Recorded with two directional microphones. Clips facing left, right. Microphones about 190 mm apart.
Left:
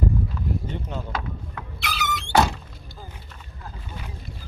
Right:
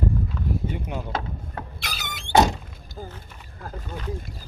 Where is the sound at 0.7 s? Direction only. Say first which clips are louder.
Right 1 dB; 10° right (ahead or behind).